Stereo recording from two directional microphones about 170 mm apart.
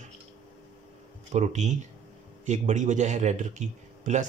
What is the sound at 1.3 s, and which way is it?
Speech, 45° right (ahead or behind).